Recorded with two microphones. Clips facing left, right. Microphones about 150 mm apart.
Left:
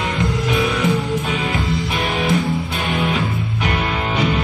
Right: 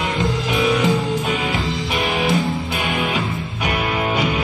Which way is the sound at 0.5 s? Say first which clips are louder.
Right 2 dB; centre (ahead or behind).